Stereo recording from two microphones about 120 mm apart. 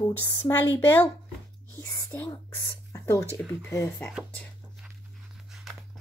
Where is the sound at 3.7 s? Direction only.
20° left (ahead or behind).